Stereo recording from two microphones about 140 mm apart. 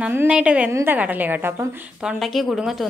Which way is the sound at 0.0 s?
10° right (ahead or behind).